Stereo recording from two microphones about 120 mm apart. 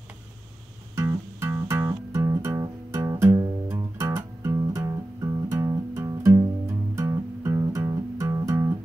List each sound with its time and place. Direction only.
0.9 s music: 25° right (ahead or behind)